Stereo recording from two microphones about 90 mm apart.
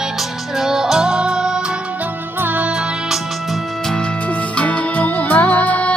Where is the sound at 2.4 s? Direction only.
20° right (ahead or behind).